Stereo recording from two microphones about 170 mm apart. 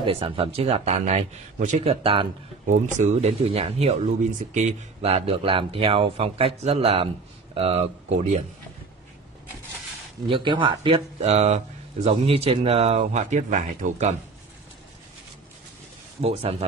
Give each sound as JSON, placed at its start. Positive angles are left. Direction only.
{"t": 0.0, "sound": "speech", "side_deg": -30}
{"t": 10.2, "sound": "speech", "side_deg": -30}
{"t": 16.2, "sound": "speech", "side_deg": -35}